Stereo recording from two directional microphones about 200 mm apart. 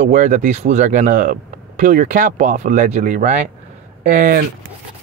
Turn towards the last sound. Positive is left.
turn(degrees=-40)  # may be behind; listen again after turning